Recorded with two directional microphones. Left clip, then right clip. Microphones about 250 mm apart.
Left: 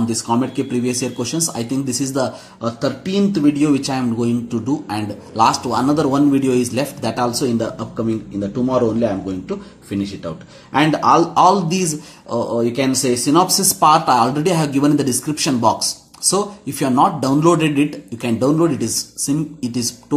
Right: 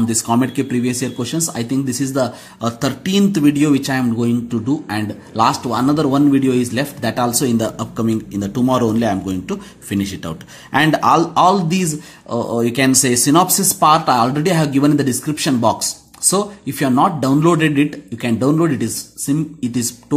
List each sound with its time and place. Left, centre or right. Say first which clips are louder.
0.0 s a man's voice: right 2 dB; right